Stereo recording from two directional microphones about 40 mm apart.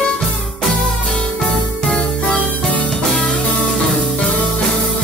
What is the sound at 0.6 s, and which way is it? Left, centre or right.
Music, centre.